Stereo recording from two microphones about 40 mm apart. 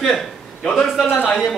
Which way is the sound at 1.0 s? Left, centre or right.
Left.